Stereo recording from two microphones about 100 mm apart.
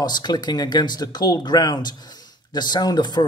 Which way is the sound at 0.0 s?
45° left (ahead or behind).